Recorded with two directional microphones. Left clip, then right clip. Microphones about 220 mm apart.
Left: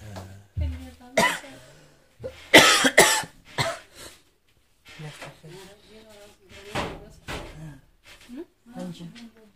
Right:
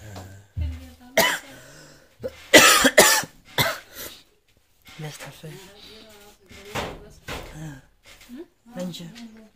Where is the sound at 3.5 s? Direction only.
40° right (ahead or behind).